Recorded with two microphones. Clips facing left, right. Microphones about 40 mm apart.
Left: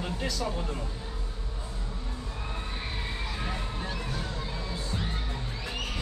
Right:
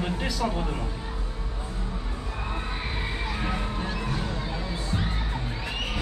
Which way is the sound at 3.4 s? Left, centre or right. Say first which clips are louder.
Right 5 dB; right.